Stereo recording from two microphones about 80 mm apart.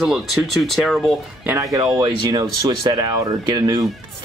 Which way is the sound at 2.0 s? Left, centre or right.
Right.